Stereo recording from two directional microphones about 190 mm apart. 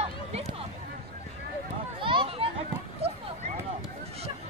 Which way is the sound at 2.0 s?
25° right (ahead or behind).